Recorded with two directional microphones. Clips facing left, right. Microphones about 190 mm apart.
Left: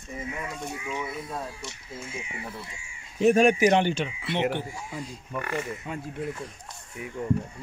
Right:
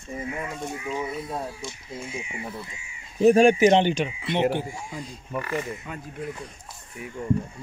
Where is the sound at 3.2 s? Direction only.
35° right (ahead or behind).